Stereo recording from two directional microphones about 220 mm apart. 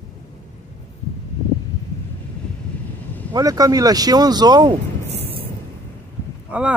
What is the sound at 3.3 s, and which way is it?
Speech, 15° right (ahead or behind).